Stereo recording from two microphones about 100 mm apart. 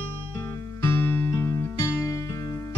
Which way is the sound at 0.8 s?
20° left (ahead or behind).